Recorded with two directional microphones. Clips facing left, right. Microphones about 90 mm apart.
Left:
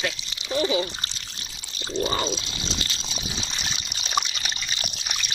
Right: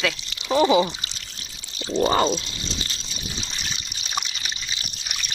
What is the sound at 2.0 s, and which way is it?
Speech, 90° right.